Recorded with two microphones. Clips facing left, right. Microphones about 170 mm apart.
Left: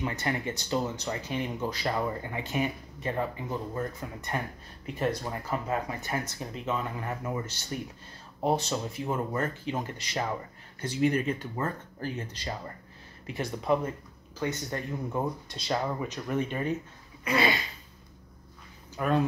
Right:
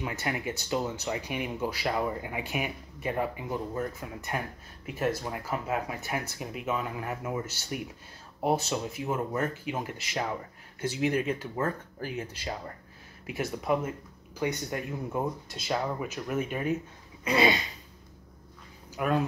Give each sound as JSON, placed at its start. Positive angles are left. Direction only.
{"t": 0.0, "sound": "speech", "side_deg": -5}
{"t": 17.2, "sound": "a sound", "side_deg": -20}
{"t": 18.9, "sound": "speech", "side_deg": -5}